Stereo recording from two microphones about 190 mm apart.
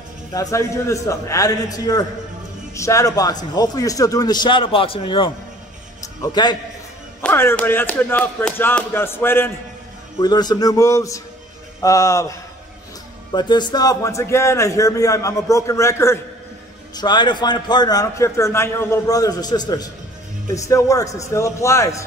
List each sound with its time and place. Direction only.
0.3 s a man's voice: 15° left (ahead or behind)